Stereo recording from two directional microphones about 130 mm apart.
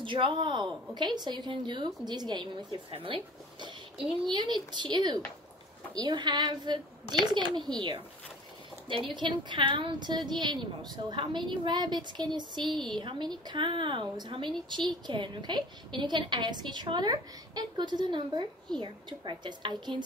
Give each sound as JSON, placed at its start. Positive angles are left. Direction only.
{"t": 0.0, "sound": "a woman's voice", "side_deg": -40}
{"t": 8.8, "sound": "a woman's voice", "side_deg": -40}